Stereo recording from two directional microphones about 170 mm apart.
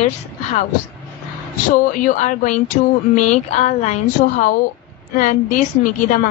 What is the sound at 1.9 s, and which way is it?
A woman's voice, 50° left (ahead or behind).